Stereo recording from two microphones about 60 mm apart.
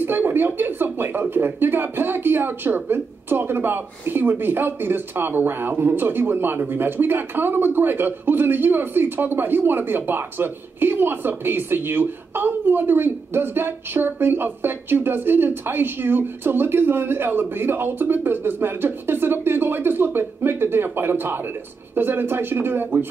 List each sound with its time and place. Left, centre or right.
0.0 s speech: right